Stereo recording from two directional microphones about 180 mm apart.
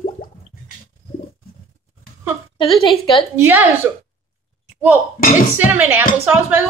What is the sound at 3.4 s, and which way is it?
Speech, 10° right (ahead or behind).